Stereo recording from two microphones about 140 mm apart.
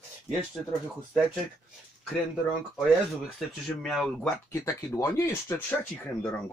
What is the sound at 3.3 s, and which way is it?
Speech, centre (ahead or behind).